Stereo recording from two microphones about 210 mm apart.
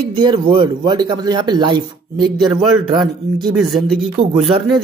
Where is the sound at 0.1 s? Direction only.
20° right (ahead or behind).